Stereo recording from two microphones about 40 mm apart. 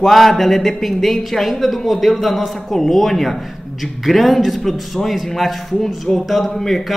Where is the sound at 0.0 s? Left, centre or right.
Centre.